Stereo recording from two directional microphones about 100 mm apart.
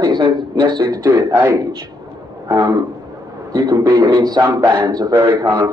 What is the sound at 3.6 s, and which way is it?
A man's voice, 40° right (ahead or behind).